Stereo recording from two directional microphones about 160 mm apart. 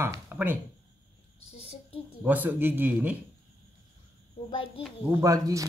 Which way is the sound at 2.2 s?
10° right (ahead or behind).